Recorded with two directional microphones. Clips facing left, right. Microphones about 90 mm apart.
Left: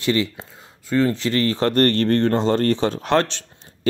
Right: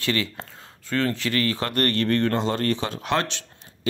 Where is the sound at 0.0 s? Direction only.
20° left (ahead or behind).